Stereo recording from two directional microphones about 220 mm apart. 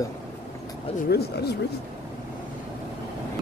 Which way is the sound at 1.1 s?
45° left (ahead or behind).